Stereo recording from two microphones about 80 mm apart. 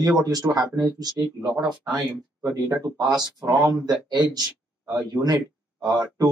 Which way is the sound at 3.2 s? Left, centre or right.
Right.